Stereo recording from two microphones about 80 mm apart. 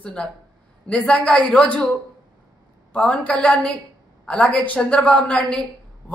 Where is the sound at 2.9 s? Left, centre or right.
Centre.